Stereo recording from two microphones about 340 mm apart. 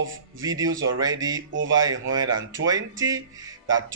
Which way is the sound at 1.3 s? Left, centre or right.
Right.